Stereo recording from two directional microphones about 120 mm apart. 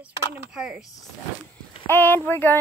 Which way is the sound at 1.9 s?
15° left (ahead or behind).